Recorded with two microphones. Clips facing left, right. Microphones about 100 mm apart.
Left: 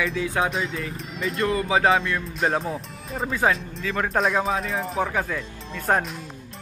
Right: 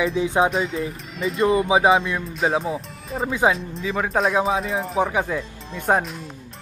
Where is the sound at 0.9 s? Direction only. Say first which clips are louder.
Right 2 dB; centre (ahead or behind).